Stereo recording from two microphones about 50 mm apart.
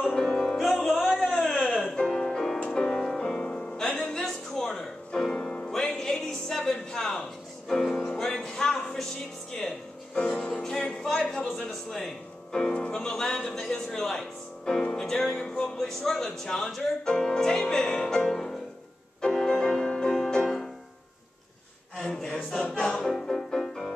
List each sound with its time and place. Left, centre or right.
0.1 s music: centre
1.2 s a sound: centre
1.8 s music: centre
3.3 s music: centre
5.7 s music: centre
10.2 s music: centre
12.5 s speech: centre
19.2 s music: centre
22.0 s choir: centre
23.0 s music: centre